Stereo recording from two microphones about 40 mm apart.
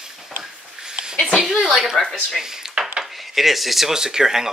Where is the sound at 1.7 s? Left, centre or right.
Centre.